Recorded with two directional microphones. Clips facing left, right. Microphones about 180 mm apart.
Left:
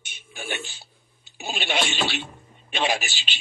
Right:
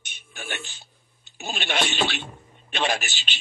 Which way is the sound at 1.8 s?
50° right (ahead or behind).